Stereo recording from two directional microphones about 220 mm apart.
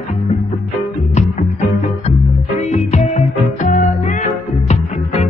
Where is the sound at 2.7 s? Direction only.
30° left (ahead or behind).